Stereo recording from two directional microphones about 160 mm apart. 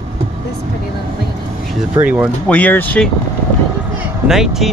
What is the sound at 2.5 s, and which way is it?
Speech, 10° left (ahead or behind).